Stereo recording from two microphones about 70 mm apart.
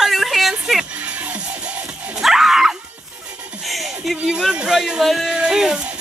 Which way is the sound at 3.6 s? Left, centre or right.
Centre.